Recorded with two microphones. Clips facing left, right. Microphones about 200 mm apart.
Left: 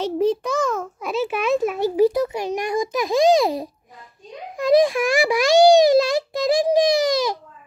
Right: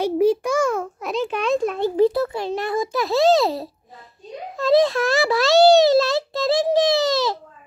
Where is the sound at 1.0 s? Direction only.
5° left (ahead or behind).